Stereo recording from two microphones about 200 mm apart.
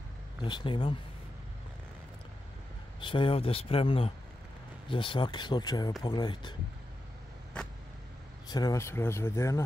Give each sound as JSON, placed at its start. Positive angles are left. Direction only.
{"t": 0.4, "sound": "speech", "side_deg": 25}
{"t": 3.0, "sound": "speech", "side_deg": 25}
{"t": 8.5, "sound": "speech", "side_deg": 20}